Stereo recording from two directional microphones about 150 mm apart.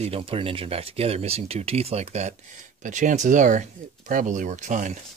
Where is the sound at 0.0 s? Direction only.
40° right (ahead or behind).